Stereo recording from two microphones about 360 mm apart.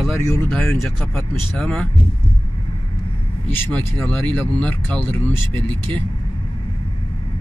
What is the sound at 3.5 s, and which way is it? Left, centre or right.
Speech, centre.